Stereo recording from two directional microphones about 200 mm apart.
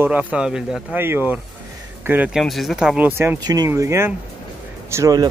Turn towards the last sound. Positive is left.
turn(degrees=-15)  # may be behind; listen again after turning